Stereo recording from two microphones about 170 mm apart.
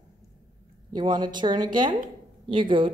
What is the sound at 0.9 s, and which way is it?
A woman's voice, 25° right (ahead or behind).